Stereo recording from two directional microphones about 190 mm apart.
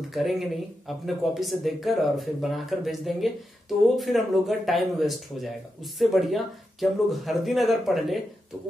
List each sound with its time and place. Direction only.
0.1 s speech: centre (ahead or behind)